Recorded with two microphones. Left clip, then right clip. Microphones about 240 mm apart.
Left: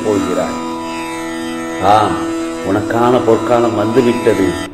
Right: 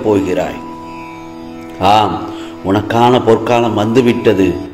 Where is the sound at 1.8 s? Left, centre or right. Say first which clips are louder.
Right 1 dB; right.